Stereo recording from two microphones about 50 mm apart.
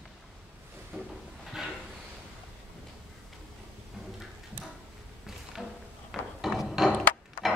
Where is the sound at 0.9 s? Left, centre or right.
Centre.